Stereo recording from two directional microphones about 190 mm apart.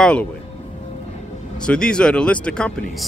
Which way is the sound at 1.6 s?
5° left (ahead or behind).